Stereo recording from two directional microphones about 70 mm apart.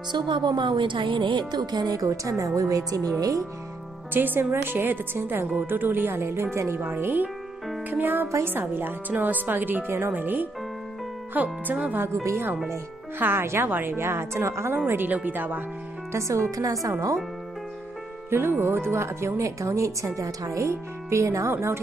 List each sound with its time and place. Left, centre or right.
0.1 s a woman's voice: right
1.3 s music: right
2.0 s speech: right
4.1 s speech: right
12.0 s speech: right
13.2 s speech: right
14.9 s speech: right
16.1 s speech: right
18.3 s speech: right